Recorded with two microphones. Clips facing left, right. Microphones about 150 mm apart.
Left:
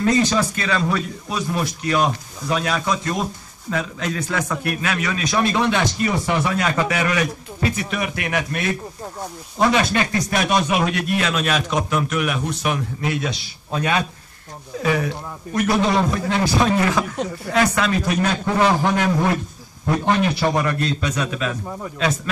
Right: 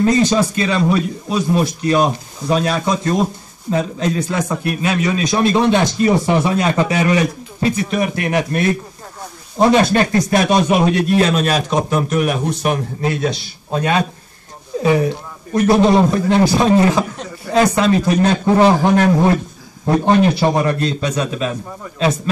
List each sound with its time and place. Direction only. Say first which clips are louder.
0.0 s a man's voice: right 4 dB; 25° right (ahead or behind)
14.8 s a man's voice: right 6 dB; 25° right (ahead or behind)